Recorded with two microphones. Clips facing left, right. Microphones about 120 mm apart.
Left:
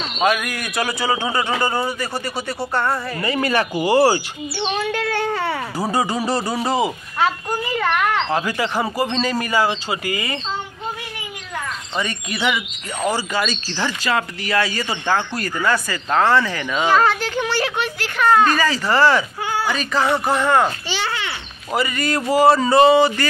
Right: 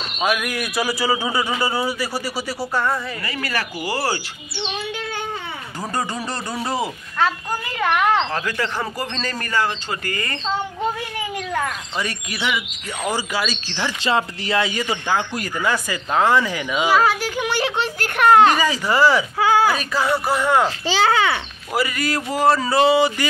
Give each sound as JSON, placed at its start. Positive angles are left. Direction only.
{"t": 0.2, "sound": "speech", "side_deg": -5}
{"t": 3.2, "sound": "speech", "side_deg": 25}
{"t": 4.9, "sound": "a sound", "side_deg": 65}
{"t": 5.8, "sound": "speech", "side_deg": 5}
{"t": 8.0, "sound": "speech", "side_deg": -25}
{"t": 8.3, "sound": "speech", "side_deg": 15}
{"t": 12.0, "sound": "speech", "side_deg": -5}
{"t": 14.0, "sound": "speech", "side_deg": -25}
{"t": 17.7, "sound": "a child's voice", "side_deg": -35}
{"t": 18.0, "sound": "speech", "side_deg": -60}
{"t": 18.5, "sound": "speech", "side_deg": -15}
{"t": 19.3, "sound": "a man's voice", "side_deg": -90}
{"t": 20.0, "sound": "speech", "side_deg": -5}
{"t": 21.7, "sound": "speech", "side_deg": -5}